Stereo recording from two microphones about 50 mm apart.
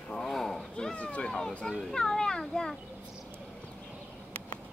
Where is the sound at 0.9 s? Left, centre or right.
Left.